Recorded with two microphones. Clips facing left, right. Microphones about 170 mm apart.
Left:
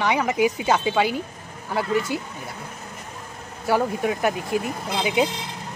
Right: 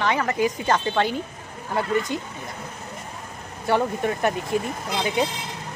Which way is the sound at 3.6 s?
5° left (ahead or behind).